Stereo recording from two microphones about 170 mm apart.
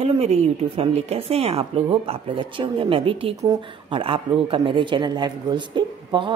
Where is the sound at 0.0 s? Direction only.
35° right (ahead or behind).